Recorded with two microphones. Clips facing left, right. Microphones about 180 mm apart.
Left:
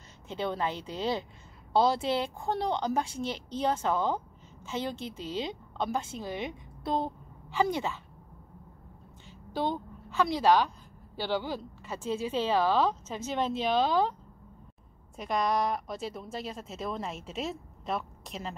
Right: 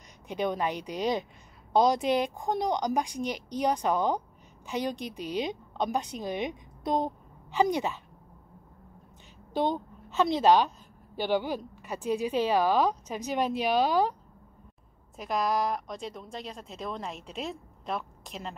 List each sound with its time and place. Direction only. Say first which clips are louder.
0.3 s a woman's voice: right 2 dB; 15° right (ahead or behind)
9.5 s a woman's voice: right 3 dB; 20° right (ahead or behind)
15.1 s speech: even; centre (ahead or behind)